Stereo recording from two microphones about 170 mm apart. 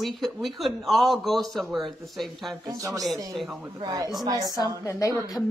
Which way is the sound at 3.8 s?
20° right (ahead or behind).